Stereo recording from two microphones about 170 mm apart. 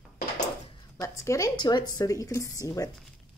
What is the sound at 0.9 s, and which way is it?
A woman's voice, 15° left (ahead or behind).